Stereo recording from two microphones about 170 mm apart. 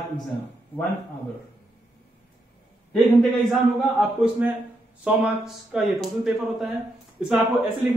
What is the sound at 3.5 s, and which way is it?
Speech, centre (ahead or behind).